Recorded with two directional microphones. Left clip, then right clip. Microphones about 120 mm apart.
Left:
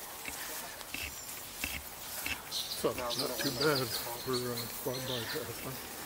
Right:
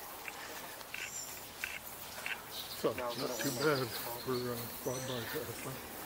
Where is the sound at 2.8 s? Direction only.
65° left (ahead or behind).